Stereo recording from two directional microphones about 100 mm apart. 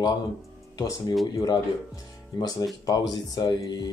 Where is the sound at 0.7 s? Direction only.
35° left (ahead or behind).